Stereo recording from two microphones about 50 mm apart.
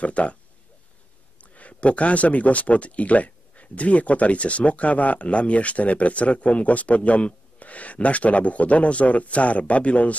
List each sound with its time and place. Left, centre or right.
0.0 s speech: left
1.4 s speech: left